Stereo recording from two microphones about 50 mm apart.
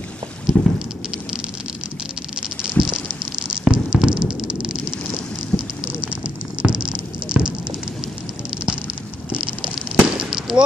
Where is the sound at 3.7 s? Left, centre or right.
Centre.